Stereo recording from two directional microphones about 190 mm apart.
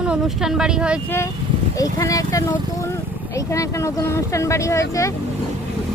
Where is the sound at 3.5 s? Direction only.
15° left (ahead or behind).